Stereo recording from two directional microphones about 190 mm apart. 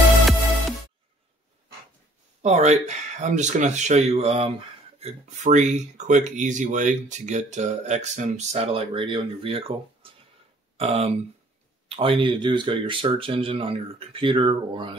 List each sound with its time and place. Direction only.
2.4 s speech: 35° right (ahead or behind)
10.0 s a sound: 30° right (ahead or behind)
10.8 s speech: 30° right (ahead or behind)